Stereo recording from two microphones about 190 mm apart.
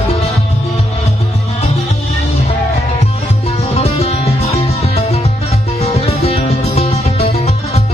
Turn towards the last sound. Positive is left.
turn(degrees=35)  # may be behind; listen again after turning